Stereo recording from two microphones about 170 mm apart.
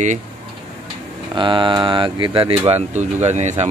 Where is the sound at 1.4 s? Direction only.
30° right (ahead or behind).